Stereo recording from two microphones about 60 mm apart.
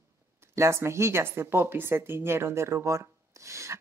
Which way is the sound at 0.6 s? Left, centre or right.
Right.